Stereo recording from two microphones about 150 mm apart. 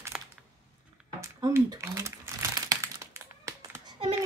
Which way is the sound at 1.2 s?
20° right (ahead or behind).